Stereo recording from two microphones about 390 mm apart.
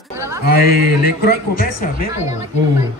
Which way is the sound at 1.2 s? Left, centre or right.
Left.